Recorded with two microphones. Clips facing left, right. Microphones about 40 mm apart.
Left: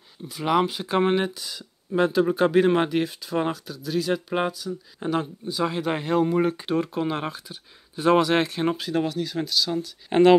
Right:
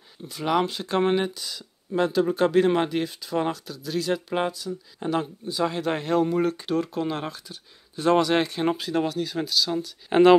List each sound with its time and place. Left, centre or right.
0.4 s speech: centre